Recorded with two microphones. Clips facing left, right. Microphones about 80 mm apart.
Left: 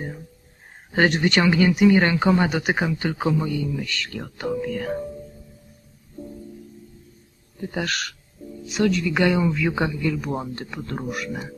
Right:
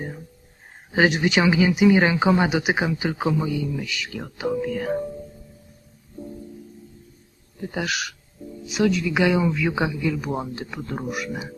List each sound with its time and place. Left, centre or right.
0.9 s speech: centre
7.7 s speech: centre